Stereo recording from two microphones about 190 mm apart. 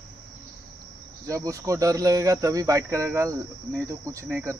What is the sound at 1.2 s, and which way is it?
Speech, 15° right (ahead or behind).